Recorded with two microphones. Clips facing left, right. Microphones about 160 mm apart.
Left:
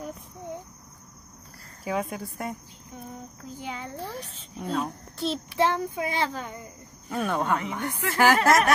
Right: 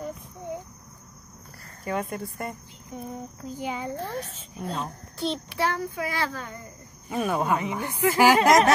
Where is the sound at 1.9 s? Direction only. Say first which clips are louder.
Even; centre (ahead or behind).